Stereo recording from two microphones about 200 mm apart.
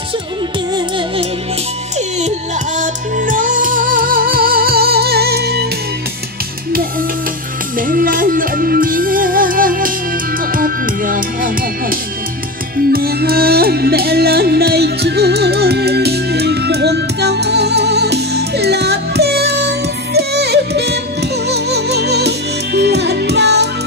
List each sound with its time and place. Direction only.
0.7 s music: 25° right (ahead or behind); by 5.7 s 55° right (ahead or behind)
7.8 s music: 45° right (ahead or behind)